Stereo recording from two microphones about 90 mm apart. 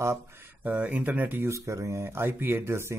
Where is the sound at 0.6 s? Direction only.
15° right (ahead or behind).